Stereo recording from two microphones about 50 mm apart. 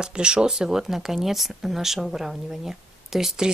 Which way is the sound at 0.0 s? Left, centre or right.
Centre.